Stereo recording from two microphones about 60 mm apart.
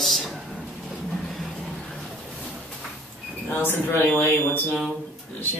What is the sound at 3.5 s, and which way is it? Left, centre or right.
Speech, left.